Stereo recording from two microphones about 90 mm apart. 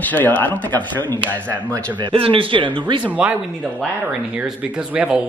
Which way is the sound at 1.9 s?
75° right (ahead or behind).